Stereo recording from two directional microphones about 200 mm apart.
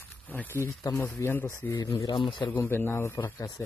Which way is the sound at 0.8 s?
10° left (ahead or behind).